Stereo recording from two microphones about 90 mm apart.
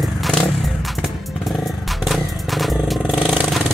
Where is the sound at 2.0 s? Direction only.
Centre (ahead or behind).